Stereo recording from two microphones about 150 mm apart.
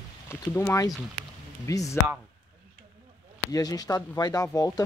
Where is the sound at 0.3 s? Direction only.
15° left (ahead or behind).